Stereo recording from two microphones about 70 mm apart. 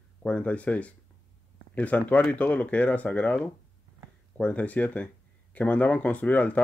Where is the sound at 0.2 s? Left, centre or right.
Centre.